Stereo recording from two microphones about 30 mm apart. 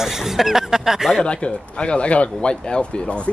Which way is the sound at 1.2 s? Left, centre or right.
Left.